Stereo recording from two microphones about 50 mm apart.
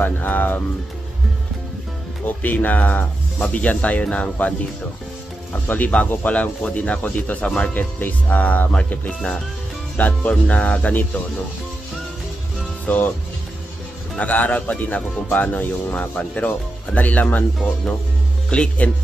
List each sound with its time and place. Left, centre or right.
0.0 s speech: left
2.2 s speech: left
12.8 s speech: left
14.1 s speech: left
18.5 s speech: left